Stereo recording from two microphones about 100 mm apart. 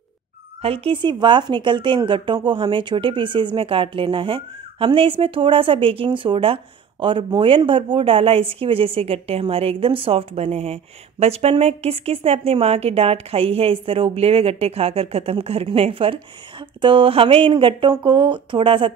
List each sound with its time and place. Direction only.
0.6 s a woman's voice: 75° right (ahead or behind)